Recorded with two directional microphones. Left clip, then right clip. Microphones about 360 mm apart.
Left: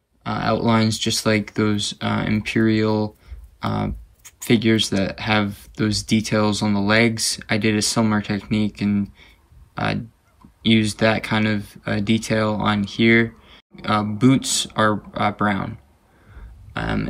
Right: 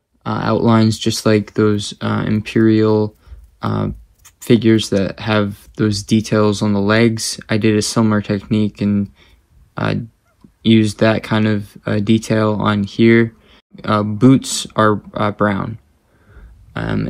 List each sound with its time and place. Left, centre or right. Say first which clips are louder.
0.2 s speech: right 4 dB; centre
9.8 s fowl: right 3 dB; centre
10.6 s speech: right 4 dB; centre